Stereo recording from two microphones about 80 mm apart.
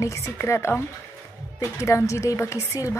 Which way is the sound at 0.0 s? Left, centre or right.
Left.